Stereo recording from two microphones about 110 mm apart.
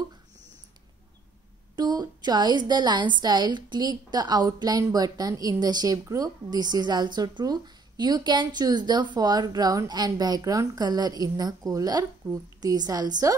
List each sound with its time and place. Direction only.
1.8 s a woman's voice: 40° right (ahead or behind)